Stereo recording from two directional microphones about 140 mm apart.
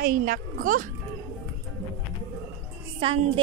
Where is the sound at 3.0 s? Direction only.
40° right (ahead or behind).